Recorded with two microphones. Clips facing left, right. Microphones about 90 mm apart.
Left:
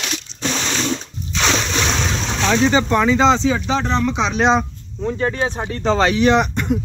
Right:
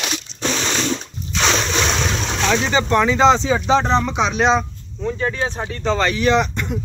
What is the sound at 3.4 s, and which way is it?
Speech, 20° right (ahead or behind).